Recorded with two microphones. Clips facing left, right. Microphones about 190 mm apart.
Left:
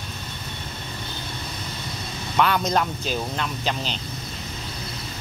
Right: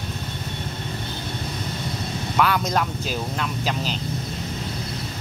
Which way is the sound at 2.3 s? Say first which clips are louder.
Left 1 dB; 5° right (ahead or behind).